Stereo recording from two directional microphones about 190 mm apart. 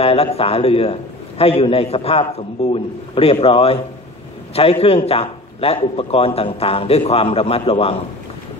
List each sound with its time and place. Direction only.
0.0 s a man's voice: 30° left (ahead or behind)